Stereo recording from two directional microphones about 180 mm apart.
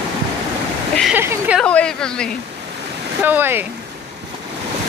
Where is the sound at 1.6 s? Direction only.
5° left (ahead or behind).